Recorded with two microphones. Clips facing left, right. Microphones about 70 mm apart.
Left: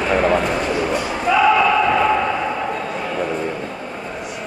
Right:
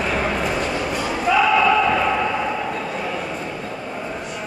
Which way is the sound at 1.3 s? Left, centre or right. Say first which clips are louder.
Left 1 dB; centre.